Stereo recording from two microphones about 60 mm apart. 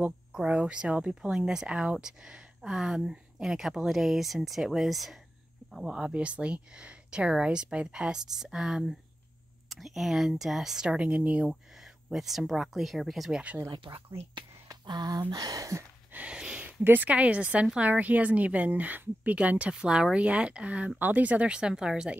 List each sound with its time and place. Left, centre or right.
0.3 s speech: centre
5.9 s speech: centre
11.8 s speech: centre
13.3 s a woman's voice: right
14.7 s speech: right
16.1 s a sound: right
16.3 s a sound: centre
16.6 s a woman's voice: right
19.7 s a woman's voice: centre
21.5 s speech: centre